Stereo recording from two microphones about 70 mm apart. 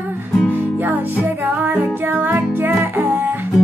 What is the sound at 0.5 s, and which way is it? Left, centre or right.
Music, right.